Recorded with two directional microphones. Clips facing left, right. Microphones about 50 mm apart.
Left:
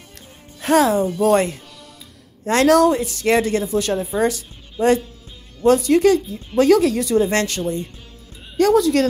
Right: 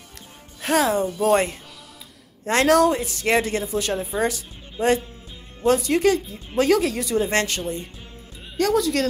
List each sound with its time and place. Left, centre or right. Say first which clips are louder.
0.6 s speech: left 5 dB; centre
1.3 s speech: left 3 dB; right
4.0 s speech: left 4 dB; centre
4.3 s speech: left 4 dB; right
8.5 s speech: left 6 dB; centre